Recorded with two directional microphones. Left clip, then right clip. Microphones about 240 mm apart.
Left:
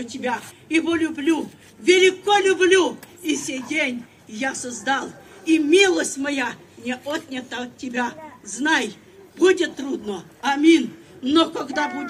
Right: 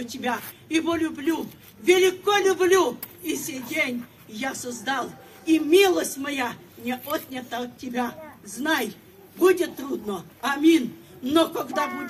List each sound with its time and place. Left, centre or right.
0.0 s a man's voice: centre